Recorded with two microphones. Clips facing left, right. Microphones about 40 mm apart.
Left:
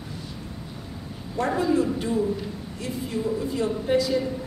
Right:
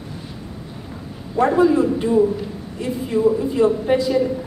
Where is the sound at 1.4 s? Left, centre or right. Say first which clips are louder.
Right 8 dB; centre.